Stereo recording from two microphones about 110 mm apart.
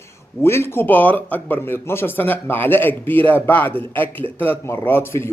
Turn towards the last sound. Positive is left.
turn(degrees=20)  # may be behind; listen again after turning